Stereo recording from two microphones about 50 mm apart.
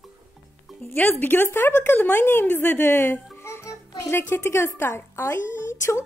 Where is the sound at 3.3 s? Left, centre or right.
Left.